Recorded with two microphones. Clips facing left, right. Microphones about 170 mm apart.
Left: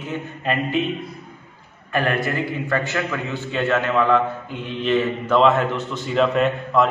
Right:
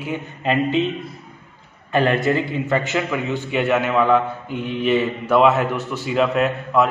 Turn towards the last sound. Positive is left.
turn(degrees=-5)  # may be behind; listen again after turning